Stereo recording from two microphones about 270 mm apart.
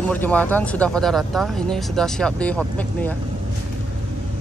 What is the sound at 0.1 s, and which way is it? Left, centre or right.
Speech, centre.